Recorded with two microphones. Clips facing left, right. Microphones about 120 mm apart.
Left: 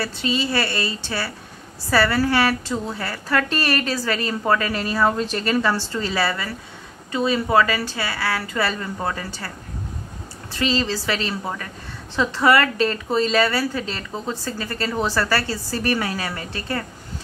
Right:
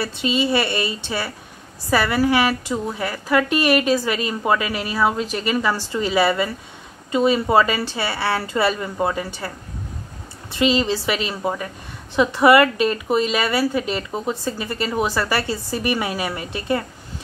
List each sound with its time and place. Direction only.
0.0 s a woman's voice: 20° right (ahead or behind)
10.5 s a woman's voice: 20° right (ahead or behind)